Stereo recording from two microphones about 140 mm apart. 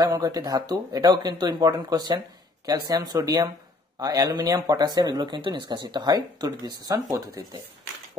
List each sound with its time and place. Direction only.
0.0 s speech: 25° right (ahead or behind)